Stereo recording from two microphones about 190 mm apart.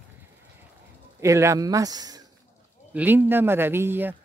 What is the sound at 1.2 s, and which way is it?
Speech, 15° right (ahead or behind).